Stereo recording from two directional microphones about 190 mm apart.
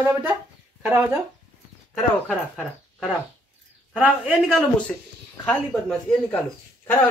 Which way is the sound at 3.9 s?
5° right (ahead or behind).